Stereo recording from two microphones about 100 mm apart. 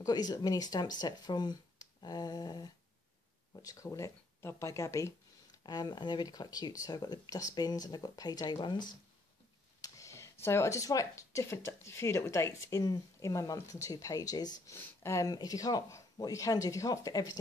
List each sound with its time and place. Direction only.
0.0 s speech: 40° left (ahead or behind)
5.7 s speech: 45° left (ahead or behind)
9.8 s speech: 35° left (ahead or behind)
14.7 s speech: 30° left (ahead or behind)